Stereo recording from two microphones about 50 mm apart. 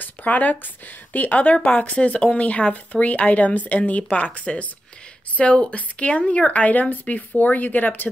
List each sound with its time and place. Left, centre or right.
0.0 s speech: left